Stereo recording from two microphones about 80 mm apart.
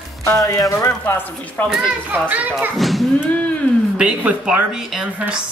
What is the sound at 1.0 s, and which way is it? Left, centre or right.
Speech, left.